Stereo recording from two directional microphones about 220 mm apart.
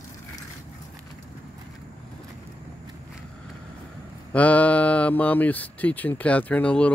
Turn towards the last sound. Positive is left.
turn(degrees=5)  # may be behind; listen again after turning